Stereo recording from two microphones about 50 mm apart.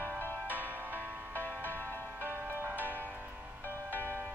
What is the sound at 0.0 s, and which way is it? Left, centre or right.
Music, right.